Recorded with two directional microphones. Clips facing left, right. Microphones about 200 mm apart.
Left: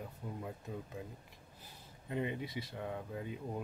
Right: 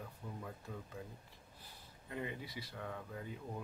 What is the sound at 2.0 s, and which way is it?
Speech, 20° left (ahead or behind).